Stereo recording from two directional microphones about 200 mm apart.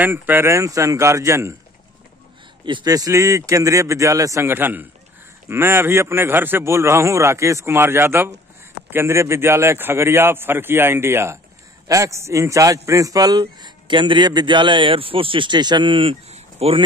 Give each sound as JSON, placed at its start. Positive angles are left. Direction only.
{"t": 0.0, "sound": "a man's voice", "side_deg": -10}
{"t": 2.6, "sound": "a man's voice", "side_deg": -20}